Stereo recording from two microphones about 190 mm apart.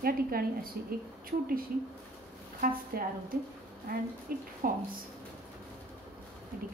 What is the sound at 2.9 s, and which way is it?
Speech, 55° right (ahead or behind).